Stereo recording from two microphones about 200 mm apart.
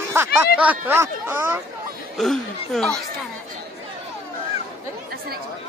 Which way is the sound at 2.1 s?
Centre (ahead or behind).